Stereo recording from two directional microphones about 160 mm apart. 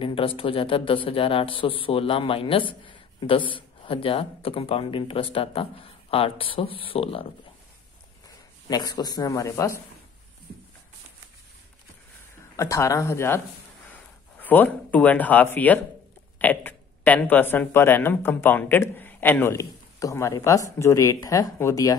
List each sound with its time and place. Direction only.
0.0 s speech: 35° left (ahead or behind)
8.6 s speech: 25° left (ahead or behind)
12.5 s speech: 20° left (ahead or behind)
14.4 s speech: 10° left (ahead or behind)